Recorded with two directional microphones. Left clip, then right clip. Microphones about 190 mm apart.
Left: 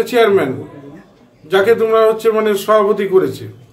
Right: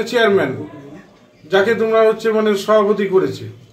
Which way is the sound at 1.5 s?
5° left (ahead or behind).